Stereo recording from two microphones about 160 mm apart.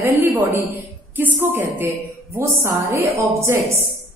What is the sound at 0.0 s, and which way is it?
A woman's voice, 15° right (ahead or behind).